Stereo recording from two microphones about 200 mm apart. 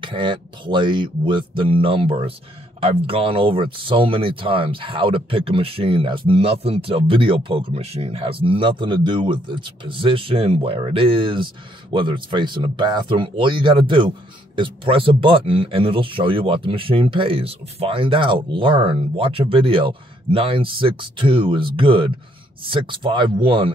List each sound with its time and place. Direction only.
0.0 s speech: 25° right (ahead or behind)